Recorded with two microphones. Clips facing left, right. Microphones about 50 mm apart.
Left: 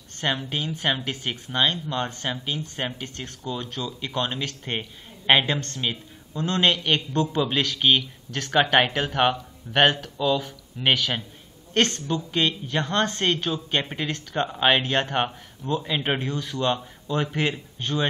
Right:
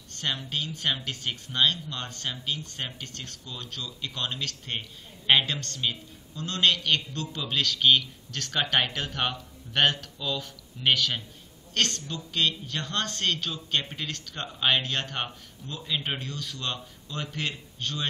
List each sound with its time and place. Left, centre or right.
0.2 s speech: left